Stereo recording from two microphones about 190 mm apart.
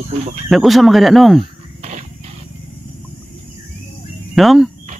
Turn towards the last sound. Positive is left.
turn(degrees=0)  # may be behind; listen again after turning